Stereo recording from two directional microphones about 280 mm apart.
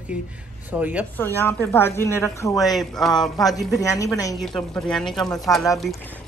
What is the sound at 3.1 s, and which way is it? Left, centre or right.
Speech, centre.